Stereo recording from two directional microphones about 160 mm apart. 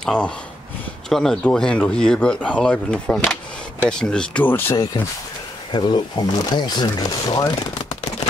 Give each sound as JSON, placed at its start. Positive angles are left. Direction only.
{"t": 0.0, "sound": "speech", "side_deg": 5}
{"t": 5.7, "sound": "speech", "side_deg": 30}